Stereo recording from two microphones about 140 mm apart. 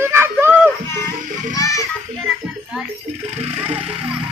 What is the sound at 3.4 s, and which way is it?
Music, 45° right (ahead or behind).